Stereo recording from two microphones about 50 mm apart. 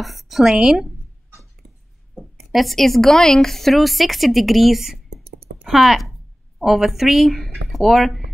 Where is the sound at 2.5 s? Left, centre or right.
Centre.